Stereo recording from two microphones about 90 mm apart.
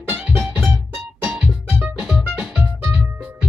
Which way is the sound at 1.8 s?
15° right (ahead or behind).